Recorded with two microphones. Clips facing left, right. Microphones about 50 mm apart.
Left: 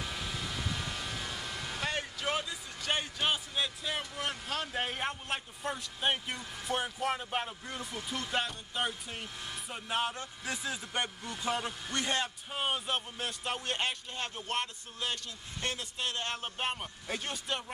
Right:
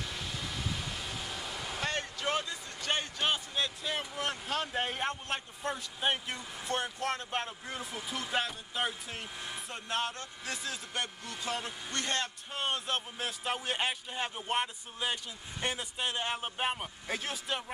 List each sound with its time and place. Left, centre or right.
0.0 s vehicle: centre
4.0 s a man's voice: centre